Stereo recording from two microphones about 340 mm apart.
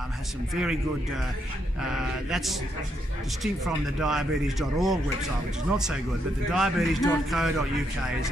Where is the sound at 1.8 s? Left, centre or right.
Centre.